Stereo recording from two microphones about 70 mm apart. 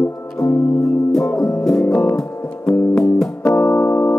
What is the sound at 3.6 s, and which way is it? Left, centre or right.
Music, left.